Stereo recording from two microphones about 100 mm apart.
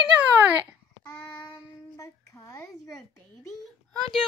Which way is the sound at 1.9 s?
30° left (ahead or behind).